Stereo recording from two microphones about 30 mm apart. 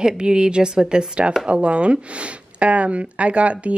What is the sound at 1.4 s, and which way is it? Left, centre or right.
Speech, right.